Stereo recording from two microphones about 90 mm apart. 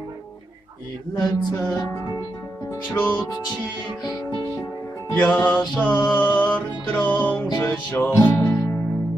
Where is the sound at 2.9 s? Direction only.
15° left (ahead or behind).